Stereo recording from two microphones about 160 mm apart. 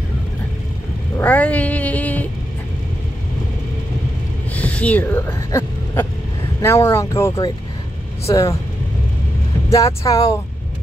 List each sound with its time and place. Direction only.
1.1 s cat: 10° left (ahead or behind)
4.6 s gasp: 10° left (ahead or behind)
6.6 s speech: 15° left (ahead or behind)
9.7 s speech: 20° left (ahead or behind)